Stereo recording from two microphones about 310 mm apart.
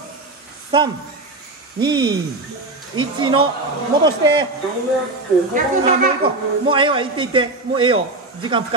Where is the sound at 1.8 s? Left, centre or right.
Centre.